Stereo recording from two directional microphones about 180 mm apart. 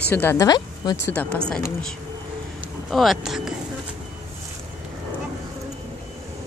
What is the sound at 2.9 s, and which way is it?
Speech, centre (ahead or behind).